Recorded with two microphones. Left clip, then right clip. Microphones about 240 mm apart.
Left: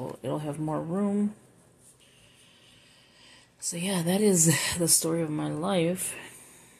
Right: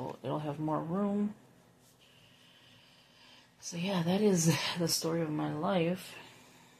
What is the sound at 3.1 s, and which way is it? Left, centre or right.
Speech, left.